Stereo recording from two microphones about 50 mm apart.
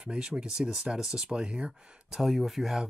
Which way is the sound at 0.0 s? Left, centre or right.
Centre.